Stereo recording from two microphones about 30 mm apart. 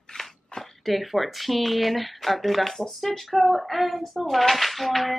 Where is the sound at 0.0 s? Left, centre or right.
Centre.